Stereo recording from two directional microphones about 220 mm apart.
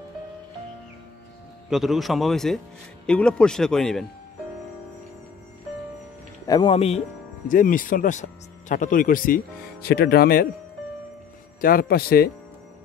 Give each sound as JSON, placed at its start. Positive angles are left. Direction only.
{"t": 1.7, "sound": "speech", "side_deg": 0}
{"t": 6.4, "sound": "speech", "side_deg": 20}
{"t": 7.4, "sound": "speech", "side_deg": 40}
{"t": 11.6, "sound": "a man's voice", "side_deg": 45}